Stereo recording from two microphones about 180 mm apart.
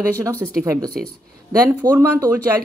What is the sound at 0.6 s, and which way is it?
Speech, 15° right (ahead or behind).